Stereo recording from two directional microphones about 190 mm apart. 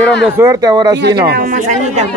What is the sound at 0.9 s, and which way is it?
Speech, 60° right (ahead or behind).